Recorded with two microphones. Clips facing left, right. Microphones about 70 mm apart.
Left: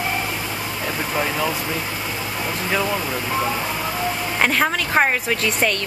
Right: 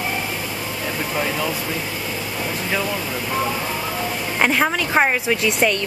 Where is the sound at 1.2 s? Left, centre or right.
Centre.